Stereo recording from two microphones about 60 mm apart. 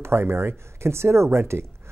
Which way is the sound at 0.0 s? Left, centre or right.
Right.